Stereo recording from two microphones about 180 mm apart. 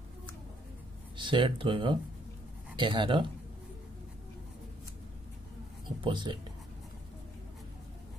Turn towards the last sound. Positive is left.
turn(degrees=-25)  # may be behind; listen again after turning